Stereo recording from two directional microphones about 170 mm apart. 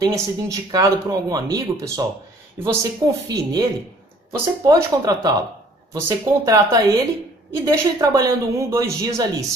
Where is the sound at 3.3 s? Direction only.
20° right (ahead or behind).